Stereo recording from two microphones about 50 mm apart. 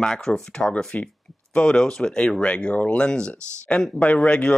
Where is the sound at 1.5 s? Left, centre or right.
Centre.